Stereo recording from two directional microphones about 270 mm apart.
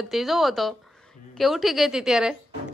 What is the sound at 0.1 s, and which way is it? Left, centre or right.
A woman's voice, centre.